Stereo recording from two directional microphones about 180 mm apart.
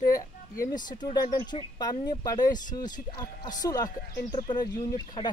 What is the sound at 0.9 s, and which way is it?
Speech, 25° left (ahead or behind).